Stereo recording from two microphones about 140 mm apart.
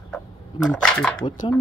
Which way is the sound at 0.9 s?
5° left (ahead or behind).